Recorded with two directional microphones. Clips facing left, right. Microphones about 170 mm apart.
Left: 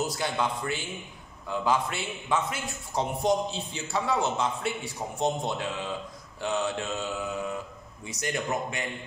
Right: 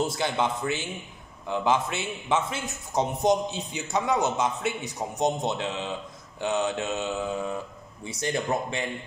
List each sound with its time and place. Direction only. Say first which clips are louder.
0.0 s a man's voice: right 3 dB; 25° right (ahead or behind)